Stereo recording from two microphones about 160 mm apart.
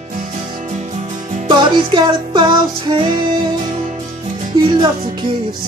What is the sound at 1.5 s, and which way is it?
Music, 30° right (ahead or behind).